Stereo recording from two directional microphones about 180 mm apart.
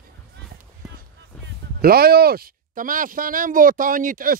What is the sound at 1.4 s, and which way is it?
Speech, 60° right (ahead or behind).